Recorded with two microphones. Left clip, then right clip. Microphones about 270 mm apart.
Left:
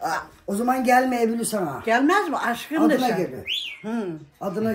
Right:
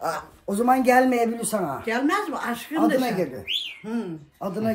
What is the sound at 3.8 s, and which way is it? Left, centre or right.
Speech, left.